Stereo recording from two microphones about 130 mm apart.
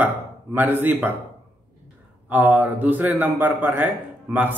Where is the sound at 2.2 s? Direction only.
15° right (ahead or behind).